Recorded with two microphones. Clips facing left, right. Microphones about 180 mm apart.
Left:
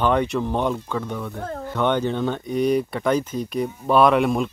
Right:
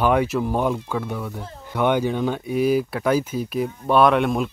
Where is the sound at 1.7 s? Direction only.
10° right (ahead or behind).